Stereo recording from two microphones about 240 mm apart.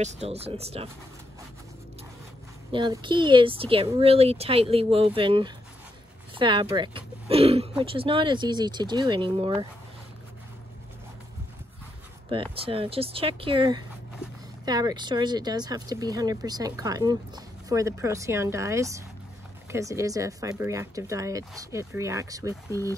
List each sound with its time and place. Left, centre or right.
0.0 s speech: right
2.7 s speech: centre
12.3 s speech: right